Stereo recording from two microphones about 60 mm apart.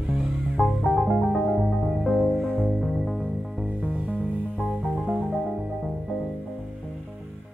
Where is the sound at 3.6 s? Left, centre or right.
Centre.